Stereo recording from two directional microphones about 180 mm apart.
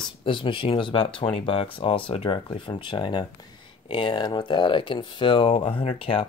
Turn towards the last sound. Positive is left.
turn(degrees=30)  # may be behind; listen again after turning